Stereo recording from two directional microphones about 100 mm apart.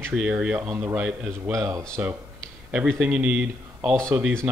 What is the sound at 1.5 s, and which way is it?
Speech, 30° right (ahead or behind).